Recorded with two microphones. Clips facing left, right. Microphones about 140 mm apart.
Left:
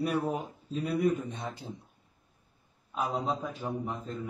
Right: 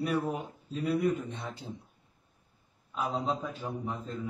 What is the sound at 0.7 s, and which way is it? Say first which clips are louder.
A man's voice: left 1 dB; 20° left (ahead or behind).